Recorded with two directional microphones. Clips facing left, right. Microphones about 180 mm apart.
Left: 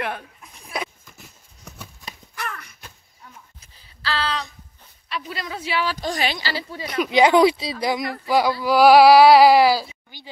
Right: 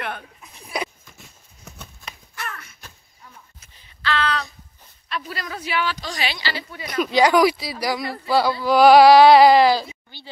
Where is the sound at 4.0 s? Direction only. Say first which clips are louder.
Right 3 dB; 35° left (ahead or behind).